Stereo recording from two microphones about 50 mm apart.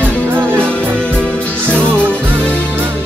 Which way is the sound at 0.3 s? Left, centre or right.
Right.